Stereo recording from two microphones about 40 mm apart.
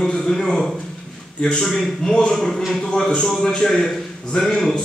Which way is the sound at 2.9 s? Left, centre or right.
Centre.